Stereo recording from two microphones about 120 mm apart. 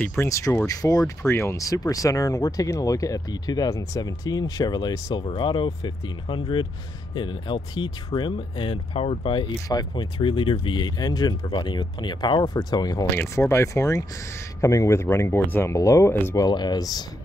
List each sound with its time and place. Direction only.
0.0 s speech: 20° left (ahead or behind); by 9.5 s 45° left (ahead or behind)
9.7 s speech: 35° left (ahead or behind)
13.1 s speech: 20° left (ahead or behind)
16.3 s speech: 35° left (ahead or behind)